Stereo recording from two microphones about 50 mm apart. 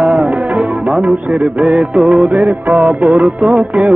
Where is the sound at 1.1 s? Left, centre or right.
Right.